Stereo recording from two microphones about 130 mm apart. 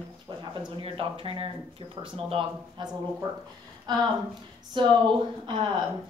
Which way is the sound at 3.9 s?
35° right (ahead or behind).